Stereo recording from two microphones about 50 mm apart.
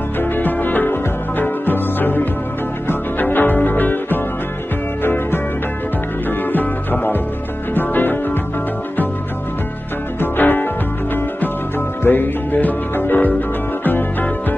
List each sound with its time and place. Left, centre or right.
0.2 s music: left
6.5 s music: left
10.2 s music: left
12.0 s music: left